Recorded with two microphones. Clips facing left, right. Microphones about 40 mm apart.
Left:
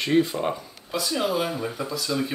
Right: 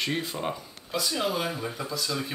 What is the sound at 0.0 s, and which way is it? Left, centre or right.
A man's voice, centre.